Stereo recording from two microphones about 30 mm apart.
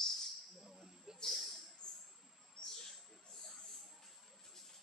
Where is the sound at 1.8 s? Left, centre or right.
Left.